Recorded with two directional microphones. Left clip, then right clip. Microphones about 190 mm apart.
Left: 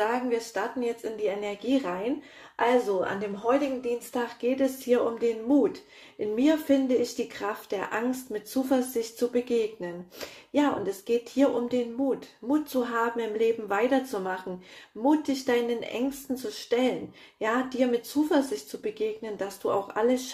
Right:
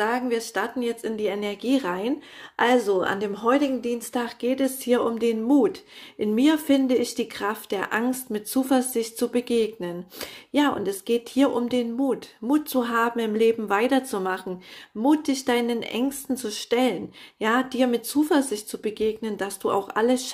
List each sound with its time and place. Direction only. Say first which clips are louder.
0.0 s speech: right 2 dB; 35° right (ahead or behind); by 4.2 s 50° right (ahead or behind)
4.2 s speech: right 2 dB; 35° right (ahead or behind)